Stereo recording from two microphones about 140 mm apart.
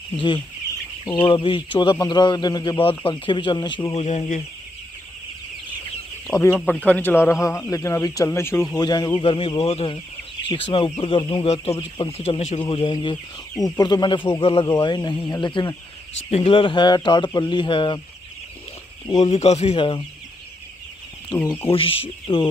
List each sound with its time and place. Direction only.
1.2 s speech: 35° left (ahead or behind)
2.8 s speech: 40° left (ahead or behind)
3.9 s speech: 50° left (ahead or behind)
6.2 s speech: 25° left (ahead or behind)
6.5 s speech: 10° left (ahead or behind)
8.7 s speech: 30° left (ahead or behind)
11.4 s speech: 45° left (ahead or behind)
12.6 s speech: 35° left (ahead or behind)
16.3 s speech: 45° left (ahead or behind)
19.1 s speech: 50° left (ahead or behind)
21.3 s speech: 30° left (ahead or behind)